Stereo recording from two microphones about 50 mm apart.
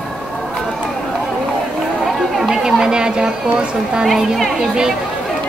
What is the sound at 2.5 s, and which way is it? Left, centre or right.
Speech, centre.